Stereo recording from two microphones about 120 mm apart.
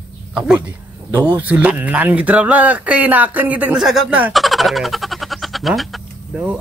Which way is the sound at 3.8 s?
5° right (ahead or behind).